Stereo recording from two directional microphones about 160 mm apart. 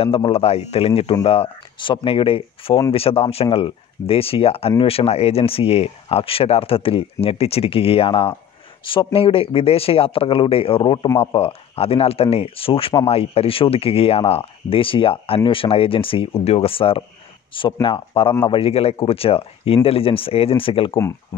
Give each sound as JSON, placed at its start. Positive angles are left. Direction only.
{"t": 0.0, "sound": "speech", "side_deg": 35}